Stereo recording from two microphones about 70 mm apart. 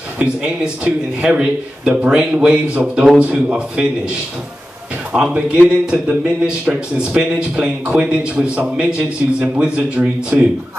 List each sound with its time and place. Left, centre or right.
0.2 s a man's voice: centre
5.1 s a man's voice: centre